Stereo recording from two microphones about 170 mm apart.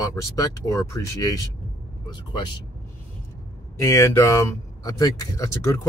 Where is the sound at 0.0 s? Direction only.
20° left (ahead or behind).